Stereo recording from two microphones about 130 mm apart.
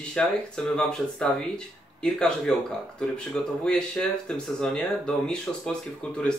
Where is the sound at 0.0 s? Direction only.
5° left (ahead or behind).